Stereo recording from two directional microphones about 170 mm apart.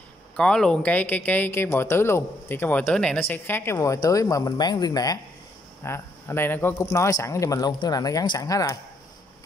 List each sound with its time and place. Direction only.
0.4 s speech: 5° left (ahead or behind); by 8.7 s 20° left (ahead or behind)